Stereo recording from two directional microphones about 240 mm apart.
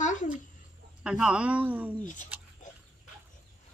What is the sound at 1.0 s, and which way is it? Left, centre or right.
Speech, centre.